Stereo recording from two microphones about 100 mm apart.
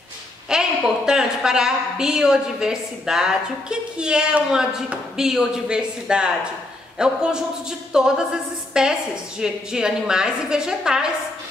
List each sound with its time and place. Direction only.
0.5 s a woman's voice: 5° right (ahead or behind)